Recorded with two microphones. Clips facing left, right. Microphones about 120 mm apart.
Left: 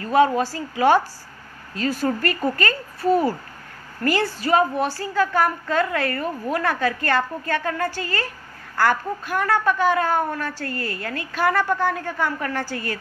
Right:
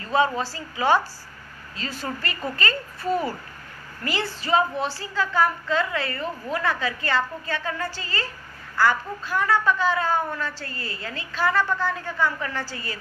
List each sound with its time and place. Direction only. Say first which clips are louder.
0.0 s a woman's voice: left 5 dB; 50° left (ahead or behind)